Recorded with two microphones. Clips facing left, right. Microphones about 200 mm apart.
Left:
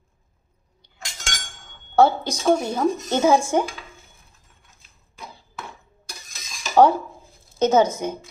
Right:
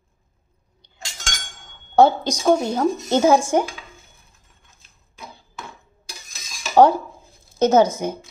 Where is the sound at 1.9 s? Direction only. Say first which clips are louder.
Right 2 dB; 15° right (ahead or behind).